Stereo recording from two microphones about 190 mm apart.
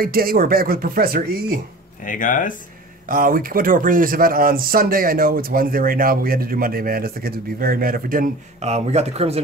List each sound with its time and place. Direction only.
0.0 s speech: 50° right (ahead or behind)
2.0 s speech: 45° left (ahead or behind)
3.1 s speech: 50° right (ahead or behind)